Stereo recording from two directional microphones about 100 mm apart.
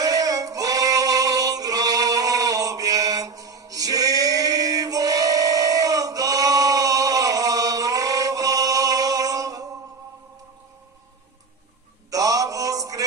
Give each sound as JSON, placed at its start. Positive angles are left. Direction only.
{"t": 0.0, "sound": "music", "side_deg": -35}
{"t": 12.1, "sound": "mantra", "side_deg": -35}